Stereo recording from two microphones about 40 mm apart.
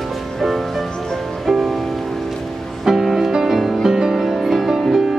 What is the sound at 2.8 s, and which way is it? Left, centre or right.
Music, centre.